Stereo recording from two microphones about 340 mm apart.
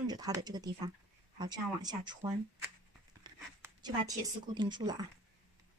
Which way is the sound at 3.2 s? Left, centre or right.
Centre.